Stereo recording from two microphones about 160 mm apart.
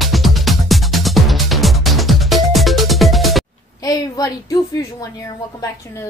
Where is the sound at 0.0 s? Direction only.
Centre (ahead or behind).